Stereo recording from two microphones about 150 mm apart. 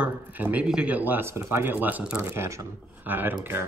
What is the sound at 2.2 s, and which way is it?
Speech, 20° right (ahead or behind).